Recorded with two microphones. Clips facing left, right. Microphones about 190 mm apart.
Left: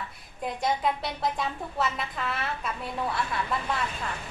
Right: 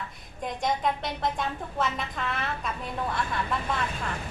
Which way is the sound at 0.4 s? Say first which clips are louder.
Even; 5° left (ahead or behind).